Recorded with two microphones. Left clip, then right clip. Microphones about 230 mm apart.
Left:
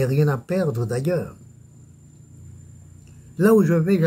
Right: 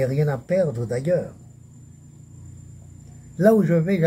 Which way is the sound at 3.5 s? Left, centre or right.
Left.